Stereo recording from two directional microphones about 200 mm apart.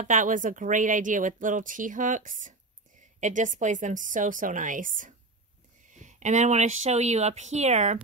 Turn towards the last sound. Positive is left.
turn(degrees=-35)  # may be behind; listen again after turning